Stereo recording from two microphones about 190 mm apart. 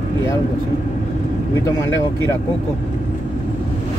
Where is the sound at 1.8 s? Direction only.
15° left (ahead or behind).